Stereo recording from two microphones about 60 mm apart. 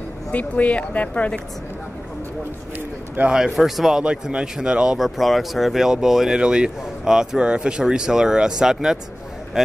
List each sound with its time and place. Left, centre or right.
0.3 s speech: left
3.3 s speech: centre
4.0 s speech: centre
5.0 s speech: centre